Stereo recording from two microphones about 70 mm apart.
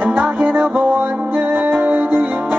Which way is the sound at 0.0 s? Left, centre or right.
Right.